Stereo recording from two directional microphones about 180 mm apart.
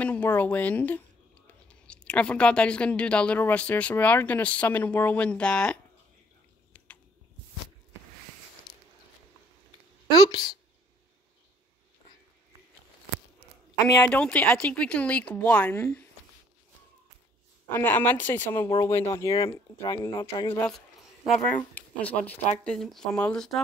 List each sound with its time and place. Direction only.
0.0 s speech: 10° left (ahead or behind)
10.1 s speech: 25° left (ahead or behind)
13.9 s speech: 10° left (ahead or behind)
17.6 s speech: 10° left (ahead or behind)
19.3 s speech: 30° left (ahead or behind)
21.3 s speech: 5° left (ahead or behind)